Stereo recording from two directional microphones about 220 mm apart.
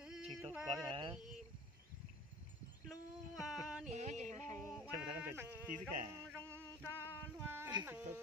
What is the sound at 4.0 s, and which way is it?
Music, 30° right (ahead or behind).